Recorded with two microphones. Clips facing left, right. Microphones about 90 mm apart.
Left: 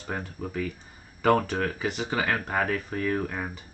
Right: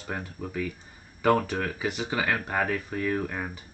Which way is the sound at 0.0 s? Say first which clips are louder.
Left 1 dB; centre (ahead or behind).